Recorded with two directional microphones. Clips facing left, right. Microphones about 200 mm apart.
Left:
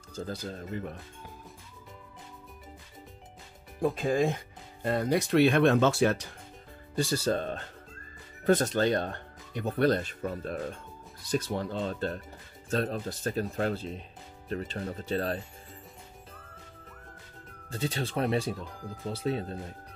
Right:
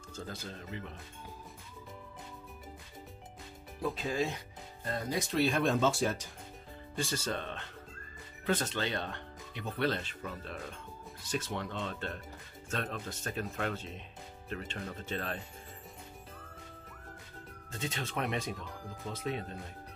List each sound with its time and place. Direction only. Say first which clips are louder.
0.1 s speech: left 7 dB; 35° left (ahead or behind)
3.8 s speech: left 7 dB; 50° left (ahead or behind)
4.8 s speech: left 8 dB; 65° left (ahead or behind)
7.0 s speech: left 8 dB; 35° left (ahead or behind)
17.6 s speech: left 6 dB; 35° left (ahead or behind)